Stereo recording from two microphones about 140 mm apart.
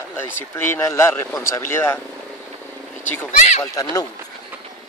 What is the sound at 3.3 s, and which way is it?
Speech, 60° left (ahead or behind).